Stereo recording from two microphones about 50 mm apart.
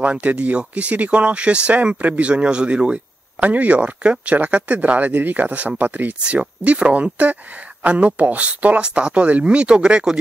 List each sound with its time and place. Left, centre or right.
0.0 s speech: right